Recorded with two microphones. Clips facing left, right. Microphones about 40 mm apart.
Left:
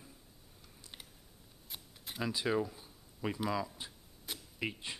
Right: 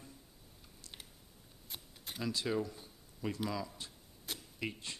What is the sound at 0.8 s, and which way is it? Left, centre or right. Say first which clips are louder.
Typing: even; centre.